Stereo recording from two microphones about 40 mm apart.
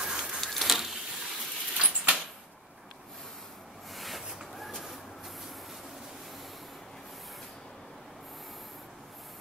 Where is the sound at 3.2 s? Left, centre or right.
Centre.